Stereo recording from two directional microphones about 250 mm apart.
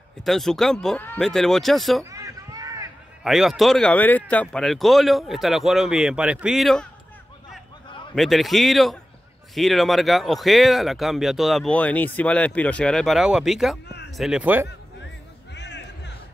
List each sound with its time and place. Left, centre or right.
0.2 s speech: centre
2.0 s a sound: centre
3.3 s speech: centre
8.1 s speech: centre
13.8 s a sound: left
14.1 s speech: centre
15.5 s music: left